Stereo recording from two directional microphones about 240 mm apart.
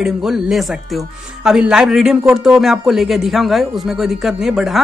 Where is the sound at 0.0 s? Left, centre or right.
Centre.